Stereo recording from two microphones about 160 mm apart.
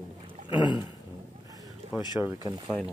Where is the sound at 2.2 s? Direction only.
5° right (ahead or behind).